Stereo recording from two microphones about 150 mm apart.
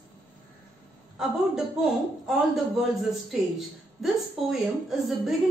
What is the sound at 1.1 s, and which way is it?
A woman's voice, centre (ahead or behind).